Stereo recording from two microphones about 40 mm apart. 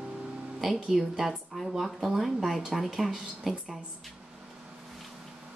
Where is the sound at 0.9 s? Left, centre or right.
Centre.